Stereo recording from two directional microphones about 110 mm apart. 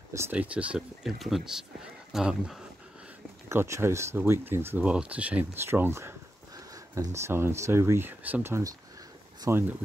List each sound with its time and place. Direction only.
0.3 s speech: 15° right (ahead or behind)
3.4 s speech: 25° right (ahead or behind)
4.8 s speech: 10° right (ahead or behind)